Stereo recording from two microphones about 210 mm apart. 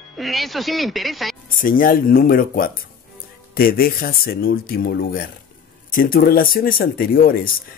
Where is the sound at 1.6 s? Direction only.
40° left (ahead or behind).